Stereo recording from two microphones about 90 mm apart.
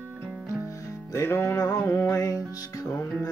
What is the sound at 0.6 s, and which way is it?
Music, 30° left (ahead or behind).